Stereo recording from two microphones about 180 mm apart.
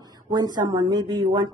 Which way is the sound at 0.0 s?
20° right (ahead or behind).